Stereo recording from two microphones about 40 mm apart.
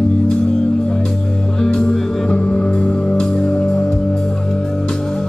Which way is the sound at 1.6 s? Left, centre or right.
Centre.